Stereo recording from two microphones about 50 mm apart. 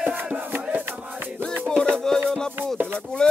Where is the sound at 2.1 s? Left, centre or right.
Centre.